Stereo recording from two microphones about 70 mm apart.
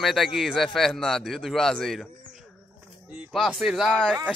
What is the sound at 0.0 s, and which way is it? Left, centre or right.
A man's voice, centre.